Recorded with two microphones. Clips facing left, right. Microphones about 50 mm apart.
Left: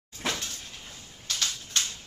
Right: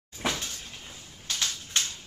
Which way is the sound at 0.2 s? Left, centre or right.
Centre.